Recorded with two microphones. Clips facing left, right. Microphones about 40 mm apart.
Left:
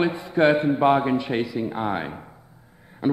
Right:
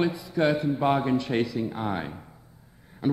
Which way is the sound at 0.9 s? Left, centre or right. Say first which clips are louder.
Left 2 dB; left.